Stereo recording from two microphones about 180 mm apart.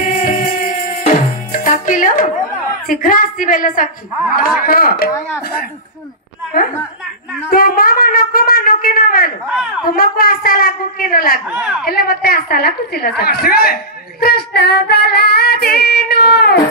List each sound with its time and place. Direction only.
0.0 s music: 45° left (ahead or behind)
3.0 s speech: 50° left (ahead or behind)
4.6 s female singing: 55° left (ahead or behind)
7.5 s speech: 55° left (ahead or behind)
9.5 s speech: 5° right (ahead or behind)
9.9 s speech: 55° left (ahead or behind)
11.4 s speech: 5° right (ahead or behind)
11.8 s female singing: 60° left (ahead or behind)